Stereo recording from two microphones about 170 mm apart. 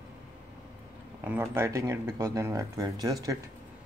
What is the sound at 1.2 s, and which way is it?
Speech, 10° right (ahead or behind).